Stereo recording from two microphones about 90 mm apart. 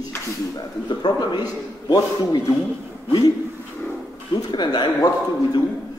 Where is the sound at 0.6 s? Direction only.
50° left (ahead or behind).